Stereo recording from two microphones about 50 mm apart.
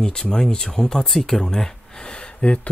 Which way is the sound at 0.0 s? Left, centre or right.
Centre.